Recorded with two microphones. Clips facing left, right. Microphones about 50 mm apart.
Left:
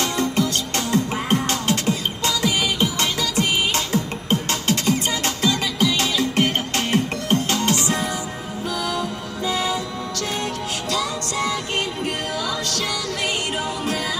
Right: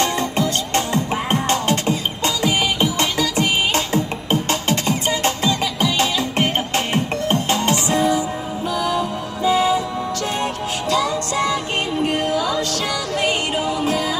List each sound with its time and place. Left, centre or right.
0.0 s music: right